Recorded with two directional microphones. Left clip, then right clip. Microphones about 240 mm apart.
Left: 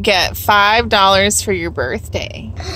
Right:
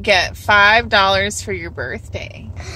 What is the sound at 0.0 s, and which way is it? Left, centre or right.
Speech, centre.